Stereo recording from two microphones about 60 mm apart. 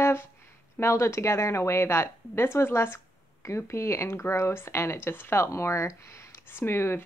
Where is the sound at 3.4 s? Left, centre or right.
Left.